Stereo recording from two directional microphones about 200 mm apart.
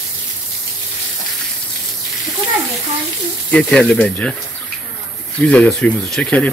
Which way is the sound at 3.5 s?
5° left (ahead or behind).